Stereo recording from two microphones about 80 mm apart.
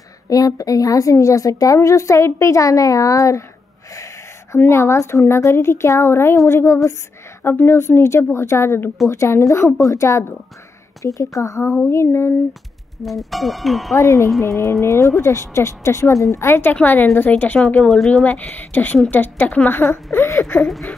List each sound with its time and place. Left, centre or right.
0.3 s a woman's voice: left
3.9 s a sound: left
4.6 s a woman's voice: left
13.0 s speech: centre
13.9 s a woman's voice: left
17.7 s speech: centre
18.2 s a woman's voice: left